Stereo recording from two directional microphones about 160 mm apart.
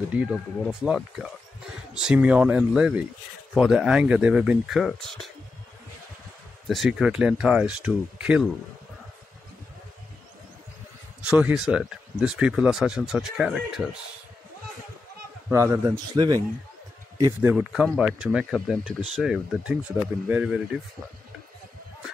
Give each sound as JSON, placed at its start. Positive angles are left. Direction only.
{"t": 0.1, "sound": "speech", "side_deg": -5}
{"t": 6.7, "sound": "speech", "side_deg": 0}
{"t": 11.2, "sound": "speech", "side_deg": -10}
{"t": 15.5, "sound": "a man's voice", "side_deg": -15}
{"t": 17.4, "sound": "speech", "side_deg": -10}